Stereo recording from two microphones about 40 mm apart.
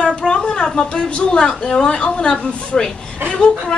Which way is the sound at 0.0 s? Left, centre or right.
Left.